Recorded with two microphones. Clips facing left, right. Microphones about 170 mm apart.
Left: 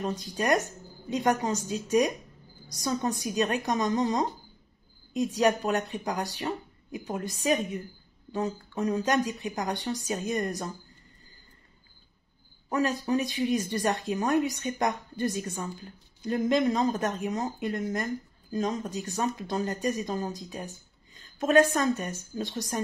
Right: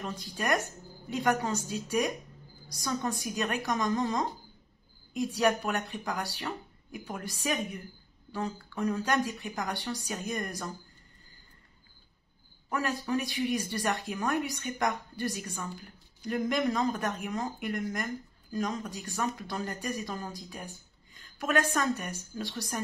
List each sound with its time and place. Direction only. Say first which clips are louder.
0.0 s speech: left 5 dB; 20° left (ahead or behind)
12.6 s speech: left 5 dB; 20° left (ahead or behind)